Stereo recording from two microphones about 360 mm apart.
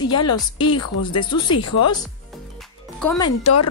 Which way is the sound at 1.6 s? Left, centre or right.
Left.